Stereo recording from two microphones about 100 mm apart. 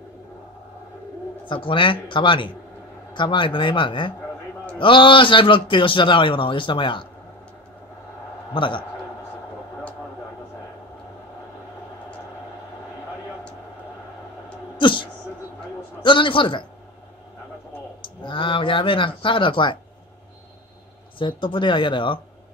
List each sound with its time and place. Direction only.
1.5 s a man's voice: 60° left (ahead or behind)
8.5 s a man's voice: 55° left (ahead or behind)
14.8 s a sound: 55° left (ahead or behind)
16.0 s a man's voice: 55° left (ahead or behind)
18.0 s speech: 55° left (ahead or behind)
21.2 s a man's voice: 55° left (ahead or behind)